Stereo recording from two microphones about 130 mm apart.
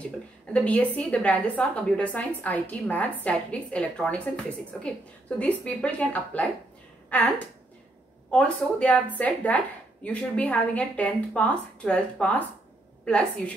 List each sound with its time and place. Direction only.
0.0 s a woman's voice: 10° left (ahead or behind)
5.4 s a woman's voice: 5° left (ahead or behind)